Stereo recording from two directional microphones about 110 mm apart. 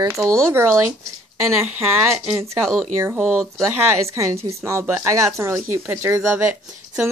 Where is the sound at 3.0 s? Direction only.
20° right (ahead or behind).